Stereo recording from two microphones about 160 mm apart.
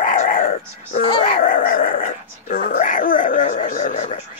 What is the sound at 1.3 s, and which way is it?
Dog, 60° left (ahead or behind).